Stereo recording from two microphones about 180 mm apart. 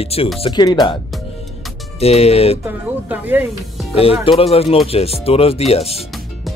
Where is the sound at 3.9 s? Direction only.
30° left (ahead or behind).